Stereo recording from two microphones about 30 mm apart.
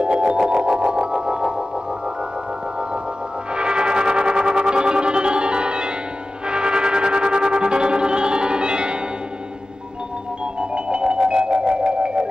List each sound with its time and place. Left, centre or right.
0.3 s music: right
3.5 s music: right
10.6 s music: right